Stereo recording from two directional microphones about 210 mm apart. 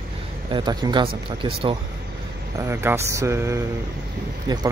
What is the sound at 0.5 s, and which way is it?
Speech, 20° right (ahead or behind).